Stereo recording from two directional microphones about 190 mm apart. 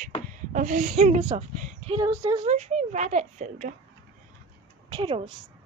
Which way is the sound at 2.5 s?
40° right (ahead or behind).